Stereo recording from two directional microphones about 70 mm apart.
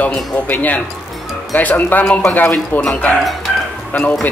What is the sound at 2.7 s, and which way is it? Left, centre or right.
Speech, left.